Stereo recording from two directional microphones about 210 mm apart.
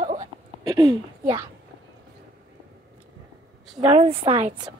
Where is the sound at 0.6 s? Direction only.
20° right (ahead or behind).